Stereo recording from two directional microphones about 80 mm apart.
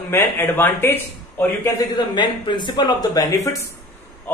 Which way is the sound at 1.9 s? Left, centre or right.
Left.